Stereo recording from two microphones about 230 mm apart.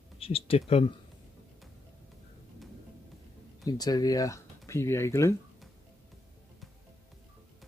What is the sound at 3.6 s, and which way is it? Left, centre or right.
Speech, centre.